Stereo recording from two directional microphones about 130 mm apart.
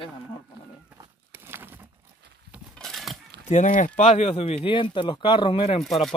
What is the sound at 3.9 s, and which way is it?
Speech, 60° left (ahead or behind).